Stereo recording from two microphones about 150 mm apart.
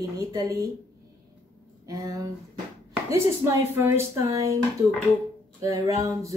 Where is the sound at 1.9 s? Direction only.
25° right (ahead or behind).